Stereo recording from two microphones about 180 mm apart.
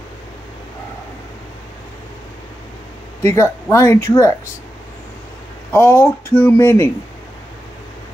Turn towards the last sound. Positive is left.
turn(degrees=15)  # may be behind; listen again after turning